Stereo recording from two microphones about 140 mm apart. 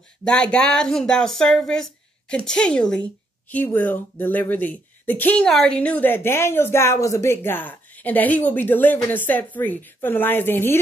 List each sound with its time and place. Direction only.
0.2 s speech: 5° left (ahead or behind)